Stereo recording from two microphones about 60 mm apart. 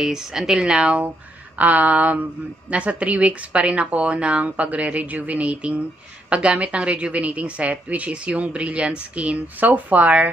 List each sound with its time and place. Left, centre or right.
0.0 s a woman's voice: centre; by 10.3 s right